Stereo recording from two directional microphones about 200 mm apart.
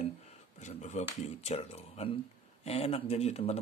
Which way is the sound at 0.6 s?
35° left (ahead or behind).